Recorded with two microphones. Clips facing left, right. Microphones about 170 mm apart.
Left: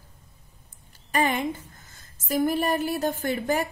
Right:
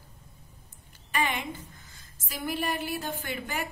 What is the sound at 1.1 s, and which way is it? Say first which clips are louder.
A woman's voice: left 6 dB; 40° left (ahead or behind).